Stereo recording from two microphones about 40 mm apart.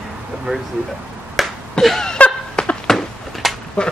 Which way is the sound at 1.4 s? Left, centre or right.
Centre.